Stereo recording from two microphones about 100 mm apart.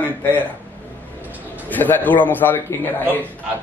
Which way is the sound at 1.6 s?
20° left (ahead or behind).